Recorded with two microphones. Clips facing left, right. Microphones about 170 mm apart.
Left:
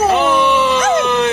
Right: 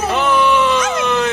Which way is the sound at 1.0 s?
Centre (ahead or behind).